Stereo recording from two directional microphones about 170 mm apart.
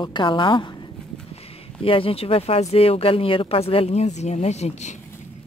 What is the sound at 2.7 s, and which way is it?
Speech, 35° left (ahead or behind).